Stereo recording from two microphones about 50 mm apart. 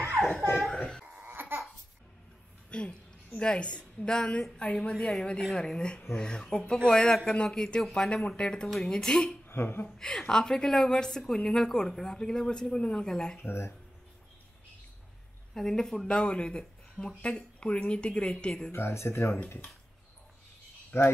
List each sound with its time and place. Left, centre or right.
0.1 s a sound: centre
0.7 s a sound: centre
1.2 s babbling: right
2.7 s a sound: centre
3.3 s a woman's voice: left
8.6 s a woman's voice: centre
8.9 s speech: centre
9.5 s speech: left
9.8 s speech: centre
13.4 s speech: left
15.5 s a woman's voice: centre
18.7 s speech: left
20.9 s speech: left